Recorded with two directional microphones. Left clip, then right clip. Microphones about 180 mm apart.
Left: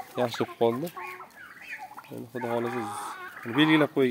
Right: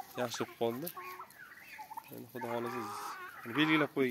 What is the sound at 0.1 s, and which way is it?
Speech, 10° left (ahead or behind).